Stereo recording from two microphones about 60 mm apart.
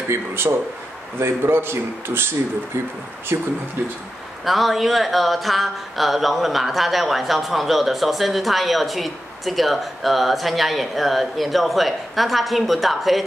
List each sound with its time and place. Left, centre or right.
0.1 s a man's voice: right
4.5 s speech: centre